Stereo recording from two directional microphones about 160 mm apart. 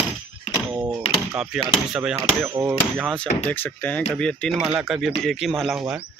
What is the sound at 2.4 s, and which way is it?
Hammer, 15° right (ahead or behind).